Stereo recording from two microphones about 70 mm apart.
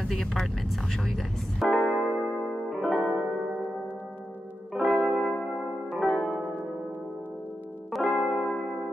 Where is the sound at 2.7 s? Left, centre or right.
Centre.